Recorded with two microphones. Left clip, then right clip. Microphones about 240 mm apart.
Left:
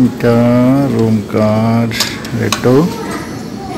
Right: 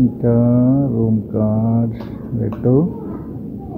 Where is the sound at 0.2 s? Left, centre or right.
Centre.